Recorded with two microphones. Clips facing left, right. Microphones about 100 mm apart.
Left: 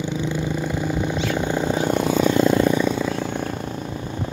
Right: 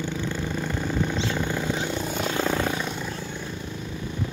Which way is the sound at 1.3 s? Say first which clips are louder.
Left 5 dB; 20° left (ahead or behind).